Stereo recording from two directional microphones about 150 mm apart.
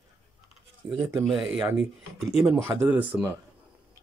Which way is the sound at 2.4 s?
15° right (ahead or behind).